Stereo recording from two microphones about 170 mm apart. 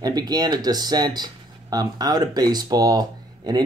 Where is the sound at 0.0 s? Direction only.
25° right (ahead or behind).